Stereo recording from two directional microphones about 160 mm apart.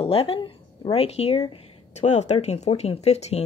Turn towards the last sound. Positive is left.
turn(degrees=40)  # may be behind; listen again after turning